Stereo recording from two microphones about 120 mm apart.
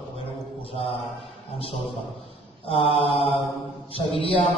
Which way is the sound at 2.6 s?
50° left (ahead or behind).